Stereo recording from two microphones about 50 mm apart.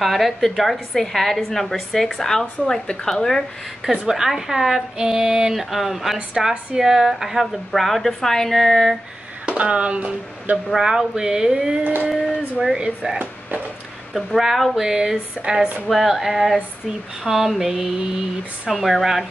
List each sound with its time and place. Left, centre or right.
0.0 s a woman's voice: centre
3.8 s a woman's voice: centre
9.5 s speech: right
10.7 s a woman's voice: centre
11.8 s a sound: right
12.7 s speech: centre
14.1 s a woman's voice: centre